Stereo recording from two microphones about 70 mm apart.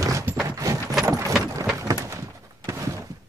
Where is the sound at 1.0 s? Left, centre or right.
Right.